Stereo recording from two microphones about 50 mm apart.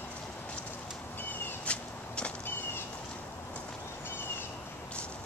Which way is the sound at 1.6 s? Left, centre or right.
Left.